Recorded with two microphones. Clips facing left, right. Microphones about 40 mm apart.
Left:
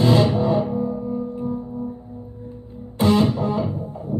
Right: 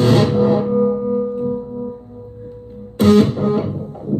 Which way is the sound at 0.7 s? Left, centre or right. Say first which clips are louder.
Right 8 dB; right.